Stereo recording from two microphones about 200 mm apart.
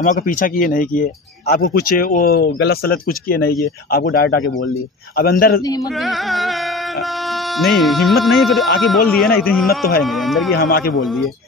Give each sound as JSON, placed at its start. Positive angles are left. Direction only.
{"t": 0.0, "sound": "speech", "side_deg": 40}
{"t": 6.0, "sound": "music", "side_deg": 0}
{"t": 7.7, "sound": "music", "side_deg": 0}
{"t": 10.5, "sound": "speech", "side_deg": 50}